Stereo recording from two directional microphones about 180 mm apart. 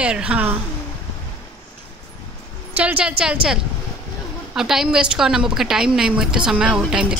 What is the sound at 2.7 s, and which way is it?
A woman's voice, 10° right (ahead or behind).